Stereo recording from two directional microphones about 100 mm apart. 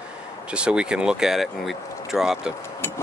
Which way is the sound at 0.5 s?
10° right (ahead or behind).